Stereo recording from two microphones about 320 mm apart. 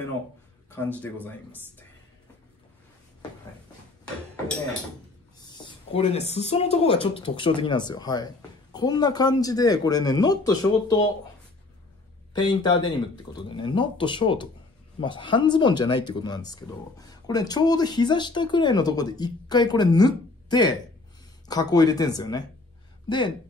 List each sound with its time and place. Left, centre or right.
0.7 s speech: centre
5.9 s speech: centre
12.4 s speech: centre